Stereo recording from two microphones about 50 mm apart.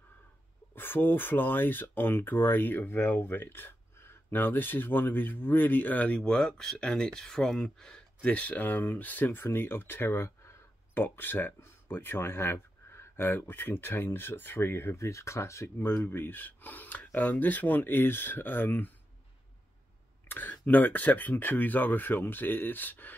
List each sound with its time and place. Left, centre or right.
0.7 s speech: left
6.2 s speech: centre
8.2 s speech: left
11.0 s speech: left
15.0 s speech: left
15.8 s speech: left
20.2 s speech: left